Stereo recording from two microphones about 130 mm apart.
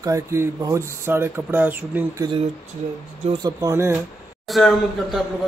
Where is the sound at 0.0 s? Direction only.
20° right (ahead or behind).